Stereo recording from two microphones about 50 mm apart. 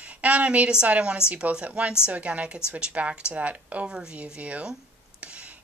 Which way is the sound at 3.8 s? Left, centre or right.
Centre.